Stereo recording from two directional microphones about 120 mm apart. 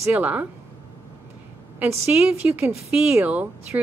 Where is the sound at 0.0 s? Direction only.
15° right (ahead or behind).